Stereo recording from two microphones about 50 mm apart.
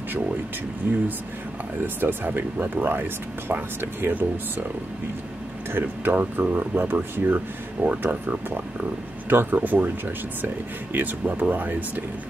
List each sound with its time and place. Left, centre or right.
0.8 s speech: right
5.7 s speech: right
8.0 s speech: right